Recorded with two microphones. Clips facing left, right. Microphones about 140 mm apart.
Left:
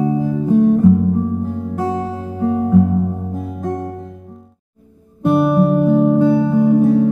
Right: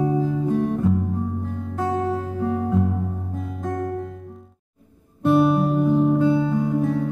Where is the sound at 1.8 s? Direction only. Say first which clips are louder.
Right 1 dB; 20° left (ahead or behind).